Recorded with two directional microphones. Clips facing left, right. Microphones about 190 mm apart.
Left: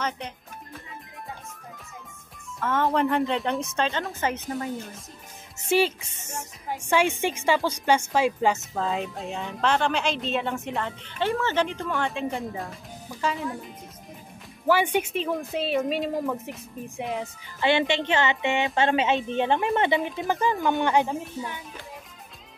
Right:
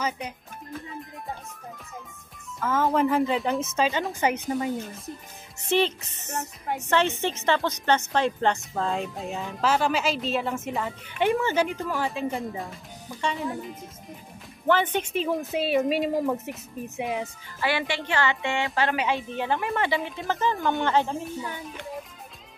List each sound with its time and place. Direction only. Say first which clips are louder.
2.6 s a woman's voice: right 1 dB; centre (ahead or behind)
5.7 s a woman's voice: left 1 dB; 10° left (ahead or behind)
11.1 s a woman's voice: right 2 dB; 15° right (ahead or behind)
14.7 s speech: left 1 dB; 10° left (ahead or behind)
15.1 s a woman's voice: right 1 dB; 5° right (ahead or behind)
17.6 s speech: left 5 dB; 25° left (ahead or behind)
20.5 s a woman's voice: left 2 dB; centre (ahead or behind)
20.8 s speech: even; 15° left (ahead or behind)